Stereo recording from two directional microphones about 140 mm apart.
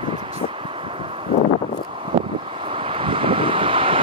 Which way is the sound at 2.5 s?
40° right (ahead or behind).